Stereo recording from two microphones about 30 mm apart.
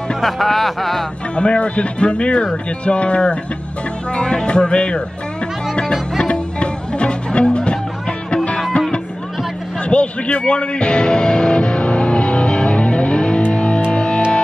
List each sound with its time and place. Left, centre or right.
0.2 s speech: centre
1.3 s speech: left
5.8 s music: left
9.8 s music: left